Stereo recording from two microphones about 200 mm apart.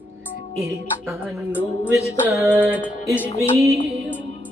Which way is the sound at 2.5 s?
10° right (ahead or behind).